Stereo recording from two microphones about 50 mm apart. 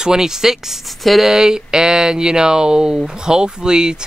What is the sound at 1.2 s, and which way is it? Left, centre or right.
Speech, centre.